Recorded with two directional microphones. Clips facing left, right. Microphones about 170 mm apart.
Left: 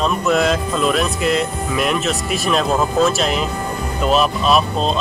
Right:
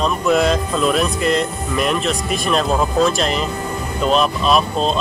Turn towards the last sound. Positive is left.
turn(degrees=0)  # may be behind; listen again after turning